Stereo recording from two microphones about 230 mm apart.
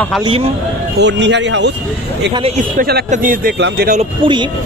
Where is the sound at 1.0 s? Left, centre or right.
Right.